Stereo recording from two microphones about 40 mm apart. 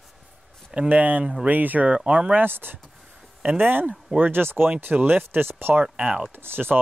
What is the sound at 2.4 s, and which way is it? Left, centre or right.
Speech, right.